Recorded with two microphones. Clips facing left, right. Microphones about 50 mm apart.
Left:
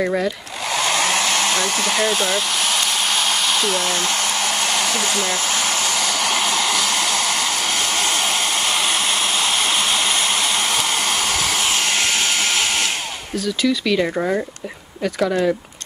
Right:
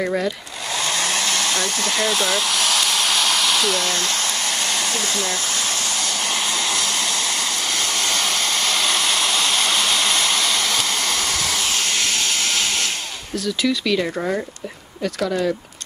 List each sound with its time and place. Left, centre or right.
0.0 s speech: centre
0.7 s hair dryer: left
2.0 s hair dryer: centre
4.6 s hair dryer: left
4.9 s speech: left
6.6 s hair dryer: left
13.6 s speech: centre